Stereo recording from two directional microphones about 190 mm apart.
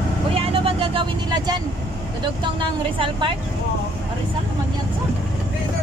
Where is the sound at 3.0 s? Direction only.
25° right (ahead or behind).